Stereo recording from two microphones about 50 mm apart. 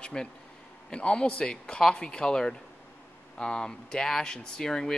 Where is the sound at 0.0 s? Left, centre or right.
Centre.